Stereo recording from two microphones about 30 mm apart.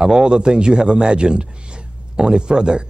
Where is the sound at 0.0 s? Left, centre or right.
Right.